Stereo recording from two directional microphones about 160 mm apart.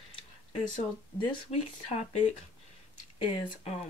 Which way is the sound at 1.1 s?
40° left (ahead or behind).